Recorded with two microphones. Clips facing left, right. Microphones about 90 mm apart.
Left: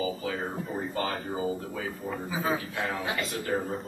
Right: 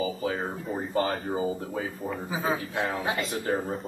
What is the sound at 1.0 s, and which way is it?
A man's voice, 30° right (ahead or behind).